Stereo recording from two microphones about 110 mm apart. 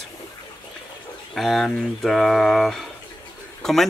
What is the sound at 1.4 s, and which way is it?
Speech, centre (ahead or behind).